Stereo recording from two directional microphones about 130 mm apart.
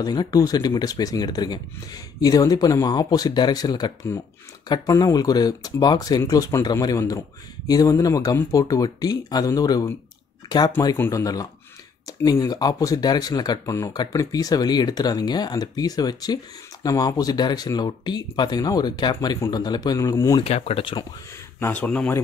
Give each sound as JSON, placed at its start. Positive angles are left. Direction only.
{"t": 0.0, "sound": "speech", "side_deg": 30}
{"t": 11.0, "sound": "speech", "side_deg": 25}
{"t": 20.3, "sound": "speech", "side_deg": 50}
{"t": 21.5, "sound": "speech", "side_deg": 15}